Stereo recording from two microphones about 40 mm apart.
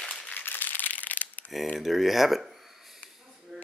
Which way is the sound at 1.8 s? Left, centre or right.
Centre.